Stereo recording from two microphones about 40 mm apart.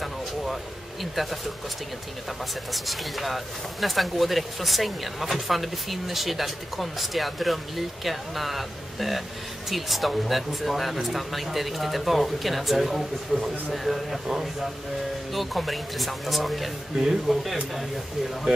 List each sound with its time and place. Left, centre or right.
1.1 s speech: centre
2.7 s speech: centre
15.3 s speech: centre